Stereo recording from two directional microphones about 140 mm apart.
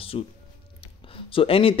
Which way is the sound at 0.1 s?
40° left (ahead or behind).